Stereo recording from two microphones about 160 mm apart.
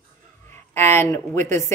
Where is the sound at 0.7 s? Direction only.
15° left (ahead or behind).